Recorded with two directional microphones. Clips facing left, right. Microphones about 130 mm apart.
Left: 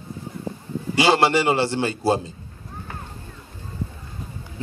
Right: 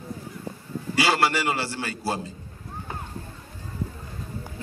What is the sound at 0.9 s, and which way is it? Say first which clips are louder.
Music: left 5 dB; 25° left (ahead or behind).